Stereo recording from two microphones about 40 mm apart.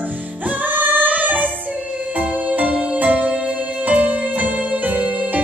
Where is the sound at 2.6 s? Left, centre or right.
Right.